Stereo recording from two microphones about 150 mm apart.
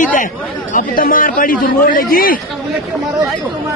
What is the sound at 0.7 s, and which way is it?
Speech, 70° left (ahead or behind).